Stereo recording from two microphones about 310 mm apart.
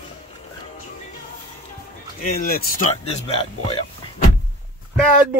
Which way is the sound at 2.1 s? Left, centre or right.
Left.